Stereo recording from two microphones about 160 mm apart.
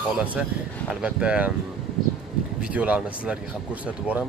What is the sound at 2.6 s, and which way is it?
Speech, 10° right (ahead or behind).